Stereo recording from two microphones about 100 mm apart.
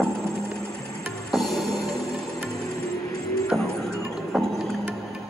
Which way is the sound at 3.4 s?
5° left (ahead or behind).